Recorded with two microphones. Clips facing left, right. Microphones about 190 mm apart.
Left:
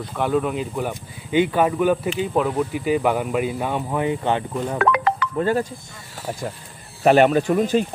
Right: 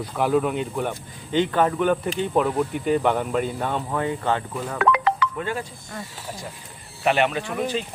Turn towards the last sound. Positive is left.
turn(degrees=45)  # may be behind; listen again after turning